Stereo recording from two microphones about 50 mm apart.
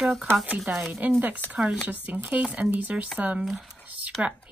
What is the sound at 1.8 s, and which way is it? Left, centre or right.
Speech, right.